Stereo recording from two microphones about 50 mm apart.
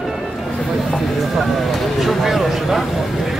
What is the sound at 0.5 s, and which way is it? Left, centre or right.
Speech, centre.